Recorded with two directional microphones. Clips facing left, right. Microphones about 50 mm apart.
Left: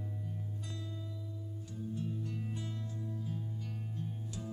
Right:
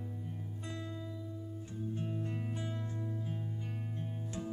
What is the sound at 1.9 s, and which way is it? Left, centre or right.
Music, right.